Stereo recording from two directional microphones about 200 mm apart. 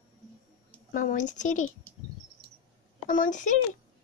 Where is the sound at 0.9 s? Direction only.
40° left (ahead or behind).